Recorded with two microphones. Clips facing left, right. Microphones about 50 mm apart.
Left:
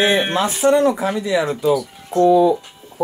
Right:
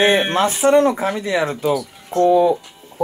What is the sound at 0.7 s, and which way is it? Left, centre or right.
Speech, right.